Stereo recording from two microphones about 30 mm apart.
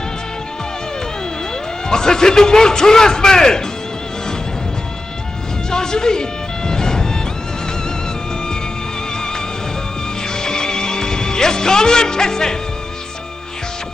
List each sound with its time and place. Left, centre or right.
1.9 s a man's voice: left
5.7 s music: left
10.2 s music: left